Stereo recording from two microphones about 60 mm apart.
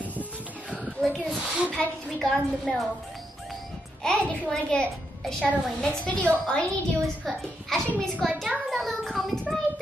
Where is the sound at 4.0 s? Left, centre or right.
Centre.